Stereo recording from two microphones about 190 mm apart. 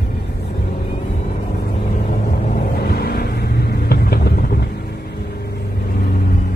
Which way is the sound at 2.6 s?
55° left (ahead or behind).